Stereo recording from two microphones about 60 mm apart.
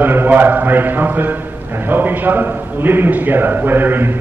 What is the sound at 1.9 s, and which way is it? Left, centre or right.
A man's voice, right.